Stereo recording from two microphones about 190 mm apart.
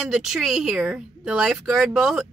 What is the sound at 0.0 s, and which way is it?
Speech, centre (ahead or behind).